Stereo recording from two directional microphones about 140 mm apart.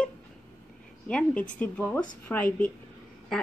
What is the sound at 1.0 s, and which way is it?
A woman's voice, 10° left (ahead or behind).